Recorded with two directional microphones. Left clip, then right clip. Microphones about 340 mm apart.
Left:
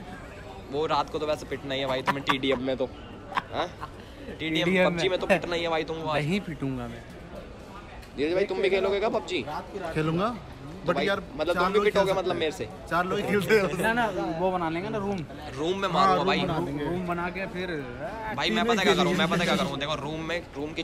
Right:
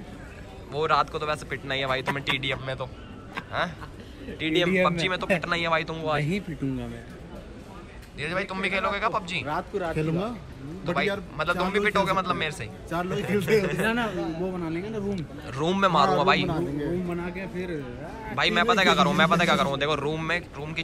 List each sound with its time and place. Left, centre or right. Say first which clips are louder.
0.7 s a man's voice: right 3 dB; centre
4.4 s a man's voice: right 1 dB; centre
8.2 s a man's voice: left 3 dB; centre
15.4 s speech: right 5 dB; centre
16.4 s speech: right 1 dB; centre
17.1 s a man's voice: left 2 dB; centre